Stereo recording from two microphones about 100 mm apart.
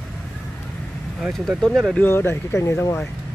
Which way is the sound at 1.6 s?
5° left (ahead or behind).